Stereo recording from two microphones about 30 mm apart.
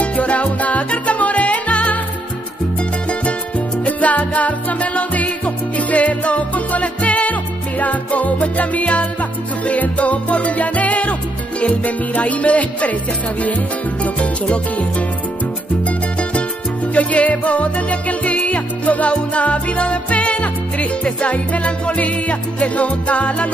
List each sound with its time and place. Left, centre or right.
0.0 s music: left
3.1 s music: left
14.5 s music: left
16.2 s music: left